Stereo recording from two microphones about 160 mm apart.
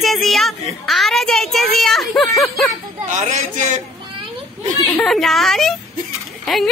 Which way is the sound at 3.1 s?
50° right (ahead or behind).